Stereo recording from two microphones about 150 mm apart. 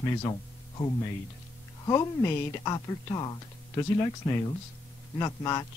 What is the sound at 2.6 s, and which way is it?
Speech, 25° left (ahead or behind).